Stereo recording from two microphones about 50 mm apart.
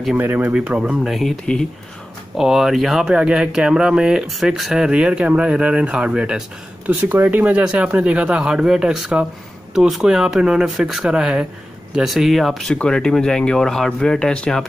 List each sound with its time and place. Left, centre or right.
0.2 s speech: right
1.0 s speech: centre
1.4 s speech: centre
2.3 s speech: centre
3.1 s speech: centre
7.1 s speech: right; by 9.2 s centre
9.8 s speech: centre
10.0 s speech: centre
12.6 s speech: centre